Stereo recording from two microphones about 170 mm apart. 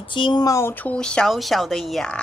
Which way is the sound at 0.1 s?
25° left (ahead or behind).